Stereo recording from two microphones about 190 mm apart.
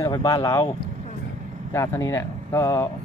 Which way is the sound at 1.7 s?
15° left (ahead or behind).